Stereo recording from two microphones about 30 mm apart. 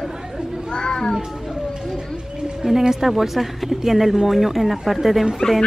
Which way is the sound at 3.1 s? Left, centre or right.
Centre.